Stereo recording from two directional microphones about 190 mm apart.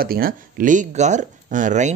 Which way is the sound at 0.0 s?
50° right (ahead or behind).